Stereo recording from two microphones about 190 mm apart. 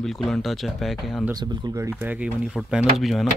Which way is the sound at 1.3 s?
20° right (ahead or behind).